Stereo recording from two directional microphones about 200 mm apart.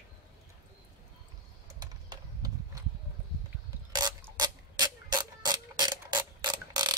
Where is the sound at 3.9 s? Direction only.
20° right (ahead or behind).